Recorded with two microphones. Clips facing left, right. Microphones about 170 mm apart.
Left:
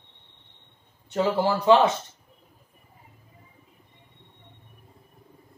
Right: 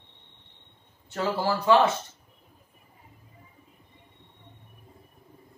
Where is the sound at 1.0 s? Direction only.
20° left (ahead or behind).